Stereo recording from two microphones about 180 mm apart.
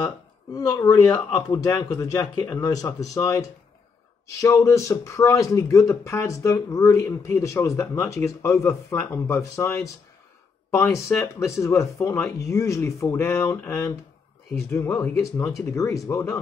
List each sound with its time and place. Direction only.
0.0 s speech: 20° left (ahead or behind)